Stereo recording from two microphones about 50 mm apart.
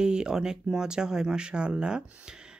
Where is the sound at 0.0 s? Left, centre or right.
Centre.